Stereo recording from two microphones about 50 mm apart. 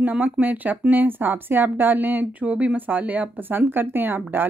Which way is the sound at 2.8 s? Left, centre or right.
Right.